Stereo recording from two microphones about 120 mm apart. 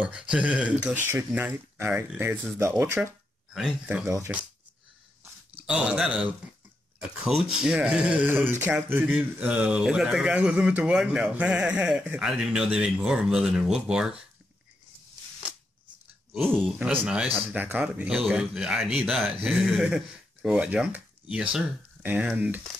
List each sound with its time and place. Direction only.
0.0 s speech: 10° right (ahead or behind)
3.5 s speech: 5° right (ahead or behind)
4.0 s speech: 25° right (ahead or behind)
5.7 s speech: 5° right (ahead or behind)
16.9 s speech: 10° right (ahead or behind)